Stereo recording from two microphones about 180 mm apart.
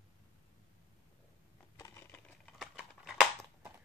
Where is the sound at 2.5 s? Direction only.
5° right (ahead or behind).